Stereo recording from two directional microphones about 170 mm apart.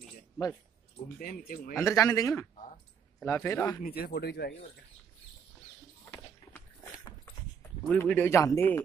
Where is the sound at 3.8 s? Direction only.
65° left (ahead or behind).